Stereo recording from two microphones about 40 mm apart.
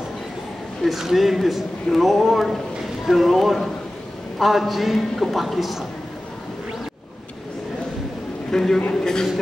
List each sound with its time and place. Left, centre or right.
0.8 s a woman's voice: centre
8.5 s a man's voice: centre